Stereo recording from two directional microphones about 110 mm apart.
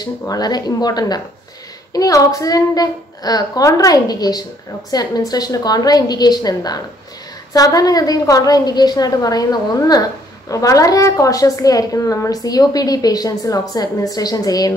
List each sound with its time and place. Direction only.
0.2 s a woman's voice: 35° left (ahead or behind)